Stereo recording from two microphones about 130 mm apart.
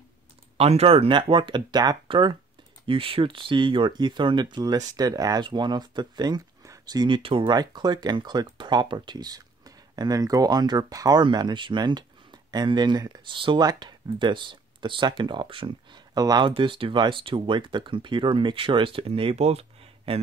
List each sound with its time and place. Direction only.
0.6 s speech: 55° right (ahead or behind)
7.5 s a man's voice: 30° right (ahead or behind); by 20.2 s 50° right (ahead or behind)